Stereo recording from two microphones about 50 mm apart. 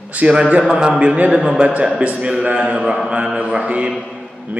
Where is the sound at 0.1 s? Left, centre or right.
Right.